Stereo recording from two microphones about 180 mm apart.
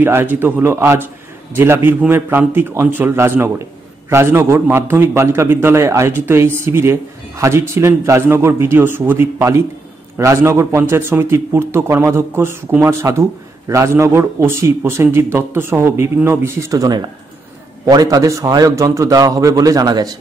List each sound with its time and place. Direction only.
0.0 s a man's voice: 10° right (ahead or behind)